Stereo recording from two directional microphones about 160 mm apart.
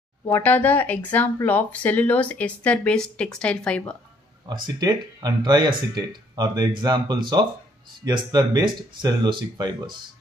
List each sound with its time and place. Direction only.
0.4 s speech: 10° left (ahead or behind)
4.5 s speech: 25° right (ahead or behind)